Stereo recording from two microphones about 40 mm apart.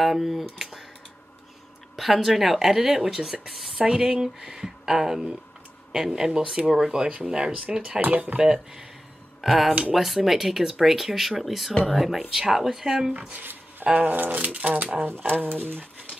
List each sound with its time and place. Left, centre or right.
0.0 s speech: centre
2.0 s speech: centre
13.4 s a sound: right
14.0 s speech: right